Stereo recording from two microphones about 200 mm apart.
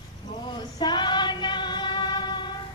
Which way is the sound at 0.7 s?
20° left (ahead or behind).